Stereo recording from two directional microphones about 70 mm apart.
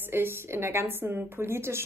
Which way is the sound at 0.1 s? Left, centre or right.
Right.